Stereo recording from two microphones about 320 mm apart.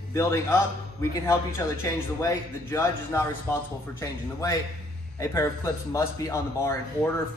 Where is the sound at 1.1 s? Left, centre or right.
Centre.